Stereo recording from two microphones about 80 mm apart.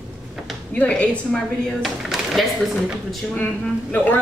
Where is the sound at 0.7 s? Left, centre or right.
Centre.